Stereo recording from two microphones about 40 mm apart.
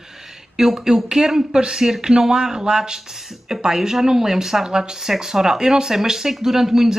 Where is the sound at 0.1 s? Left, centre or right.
Centre.